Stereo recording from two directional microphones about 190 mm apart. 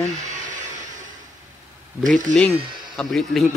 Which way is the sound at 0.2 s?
40° right (ahead or behind).